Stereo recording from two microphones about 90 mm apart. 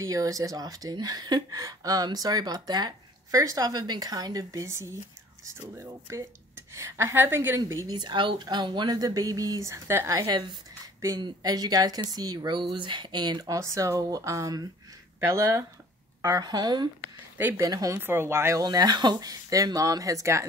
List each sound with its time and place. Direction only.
0.0 s a woman's voice: 40° right (ahead or behind)
7.9 s speech: 55° right (ahead or behind); by 10.3 s 40° right (ahead or behind)
11.1 s speech: 50° right (ahead or behind)
12.7 s speech: 65° right (ahead or behind); by 15.6 s 35° right (ahead or behind)
16.2 s speech: 45° right (ahead or behind)
17.6 s a woman's voice: 40° right (ahead or behind)
17.9 s speech: 25° right (ahead or behind)
18.6 s speech: 45° right (ahead or behind)